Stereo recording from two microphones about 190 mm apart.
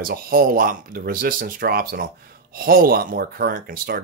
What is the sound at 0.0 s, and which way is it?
Speech, 50° right (ahead or behind).